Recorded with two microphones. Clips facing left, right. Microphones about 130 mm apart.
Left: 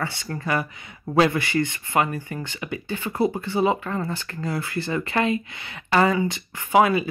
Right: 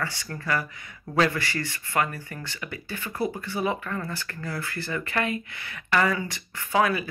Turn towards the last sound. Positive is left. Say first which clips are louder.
# left 5 dB
turn(degrees=20)  # may be behind; listen again after turning